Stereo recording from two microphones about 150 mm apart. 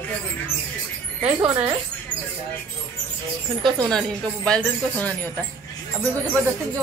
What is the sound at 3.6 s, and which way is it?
Speech, 5° left (ahead or behind).